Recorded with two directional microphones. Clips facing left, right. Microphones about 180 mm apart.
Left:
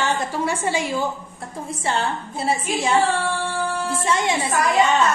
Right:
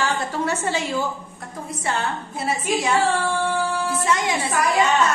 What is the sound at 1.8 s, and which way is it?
A woman's voice, 30° left (ahead or behind).